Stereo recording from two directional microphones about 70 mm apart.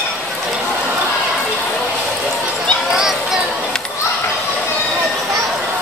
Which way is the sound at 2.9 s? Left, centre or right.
Centre.